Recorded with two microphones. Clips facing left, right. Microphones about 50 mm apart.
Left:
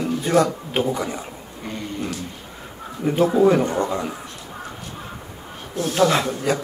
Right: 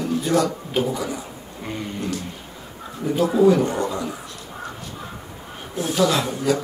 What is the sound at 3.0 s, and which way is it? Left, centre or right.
Speech, left.